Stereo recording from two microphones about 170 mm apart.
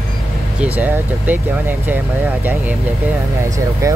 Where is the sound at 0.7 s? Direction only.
10° right (ahead or behind).